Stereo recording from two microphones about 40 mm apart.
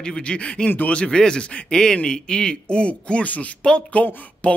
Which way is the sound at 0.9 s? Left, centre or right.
Left.